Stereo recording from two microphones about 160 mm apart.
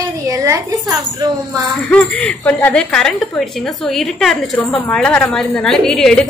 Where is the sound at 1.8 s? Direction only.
10° left (ahead or behind).